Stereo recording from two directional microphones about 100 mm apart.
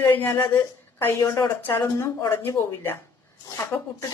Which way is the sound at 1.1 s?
35° left (ahead or behind).